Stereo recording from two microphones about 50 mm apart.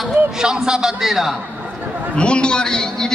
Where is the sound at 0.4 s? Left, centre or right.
Centre.